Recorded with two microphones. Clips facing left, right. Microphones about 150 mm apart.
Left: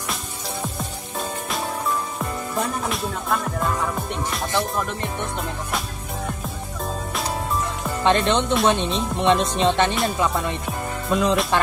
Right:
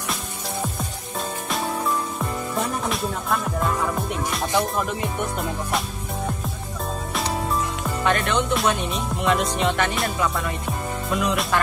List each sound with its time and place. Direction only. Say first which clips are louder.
2.5 s music: left 1 dB; centre (ahead or behind)
8.0 s speech: left 3 dB; 25° left (ahead or behind)
11.1 s music: left 4 dB; 30° left (ahead or behind)